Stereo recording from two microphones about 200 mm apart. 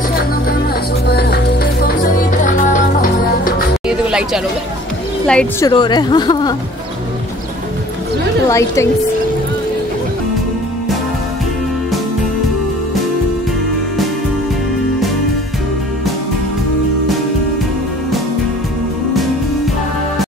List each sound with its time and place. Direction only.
1.0 s music: 55° left (ahead or behind)
3.8 s music: 5° right (ahead or behind)
5.2 s speech: 5° left (ahead or behind)
5.7 s speech: 20° left (ahead or behind)
8.5 s a woman's voice: 15° left (ahead or behind)